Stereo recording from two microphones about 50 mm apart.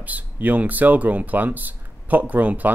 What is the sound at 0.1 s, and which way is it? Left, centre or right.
Speech, right.